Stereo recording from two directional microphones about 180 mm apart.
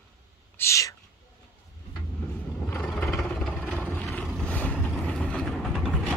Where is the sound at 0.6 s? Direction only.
15° left (ahead or behind).